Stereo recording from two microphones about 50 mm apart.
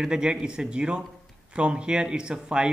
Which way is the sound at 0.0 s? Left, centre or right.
Centre.